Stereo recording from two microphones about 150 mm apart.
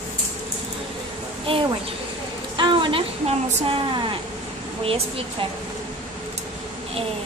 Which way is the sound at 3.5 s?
35° right (ahead or behind).